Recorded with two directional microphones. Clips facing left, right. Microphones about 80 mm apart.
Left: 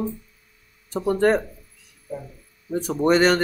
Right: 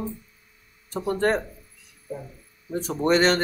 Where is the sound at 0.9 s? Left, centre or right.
Centre.